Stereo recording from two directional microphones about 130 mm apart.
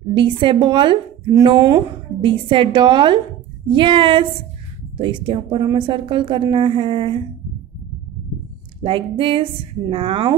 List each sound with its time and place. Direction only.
0.1 s a woman's voice: 40° right (ahead or behind)
8.8 s a woman's voice: 40° right (ahead or behind)